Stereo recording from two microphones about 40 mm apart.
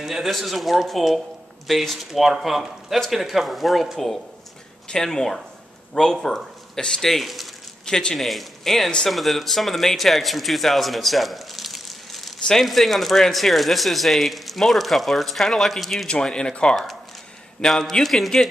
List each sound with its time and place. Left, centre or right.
0.0 s speech: centre
4.8 s speech: centre
6.2 s a sound: centre
6.8 s speech: centre
7.1 s speech: centre
7.8 s speech: centre
8.3 s speech: centre
16.1 s a man's voice: left; by 18.5 s centre